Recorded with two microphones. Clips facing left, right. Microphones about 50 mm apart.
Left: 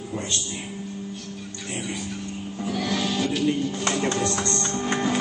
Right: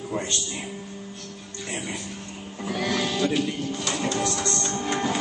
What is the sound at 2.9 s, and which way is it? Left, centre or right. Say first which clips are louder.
Music: right 2 dB; right.